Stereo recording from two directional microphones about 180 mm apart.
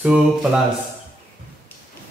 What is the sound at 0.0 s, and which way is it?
Speech, 5° right (ahead or behind).